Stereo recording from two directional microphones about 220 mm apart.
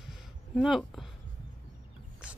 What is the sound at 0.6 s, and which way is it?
Speech, centre (ahead or behind).